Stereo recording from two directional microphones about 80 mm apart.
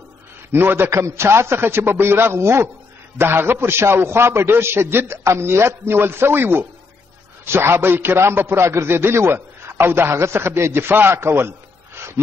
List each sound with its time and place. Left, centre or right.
0.5 s a man's voice: right